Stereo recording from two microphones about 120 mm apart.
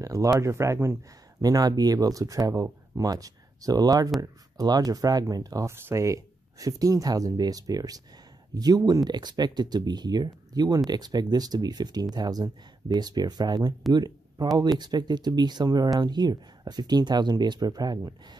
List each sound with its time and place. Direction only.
0.0 s speech: 25° right (ahead or behind)